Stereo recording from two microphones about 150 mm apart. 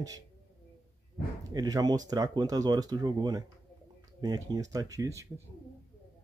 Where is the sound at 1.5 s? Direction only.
25° right (ahead or behind).